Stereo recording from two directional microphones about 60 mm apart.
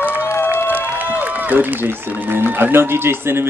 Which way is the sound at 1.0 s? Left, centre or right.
Right.